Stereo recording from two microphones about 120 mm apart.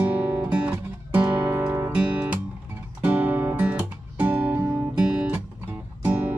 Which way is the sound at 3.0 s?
15° right (ahead or behind).